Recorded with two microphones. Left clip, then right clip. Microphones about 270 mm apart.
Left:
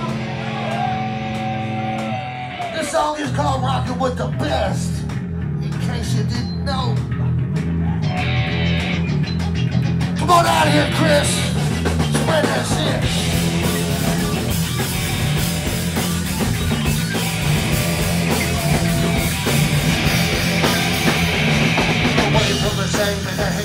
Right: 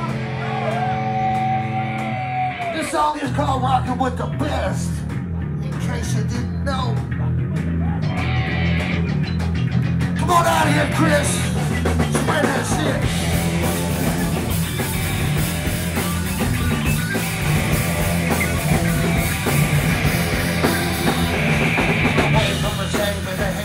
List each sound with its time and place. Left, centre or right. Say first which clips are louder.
10.2 s music: left 2 dB; left